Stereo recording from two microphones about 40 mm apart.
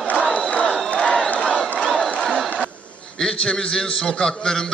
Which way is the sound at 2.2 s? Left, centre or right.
Centre.